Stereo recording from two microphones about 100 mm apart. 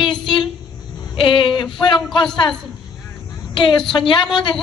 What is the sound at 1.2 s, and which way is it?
A woman's voice, 55° left (ahead or behind).